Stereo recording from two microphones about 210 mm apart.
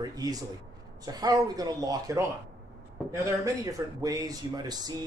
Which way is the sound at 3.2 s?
15° right (ahead or behind).